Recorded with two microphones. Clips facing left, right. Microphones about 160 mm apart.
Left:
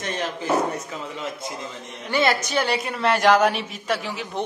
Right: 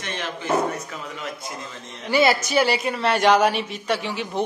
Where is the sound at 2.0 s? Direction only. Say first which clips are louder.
Right 3 dB; 10° right (ahead or behind).